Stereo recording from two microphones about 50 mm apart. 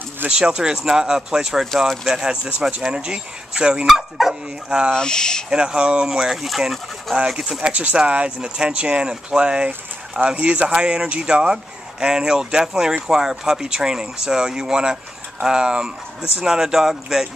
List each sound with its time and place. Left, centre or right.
0.3 s speech: centre
3.8 s speech: centre
4.6 s speech: centre
4.9 s speech: centre
5.5 s speech: centre
7.2 s speech: centre
7.7 s speech: right; by 17.3 s centre